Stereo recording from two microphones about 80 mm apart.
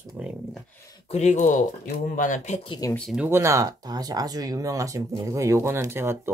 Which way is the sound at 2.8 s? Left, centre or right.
Left.